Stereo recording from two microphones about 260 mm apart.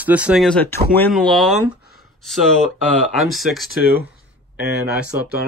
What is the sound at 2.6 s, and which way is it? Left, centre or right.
Speech, centre.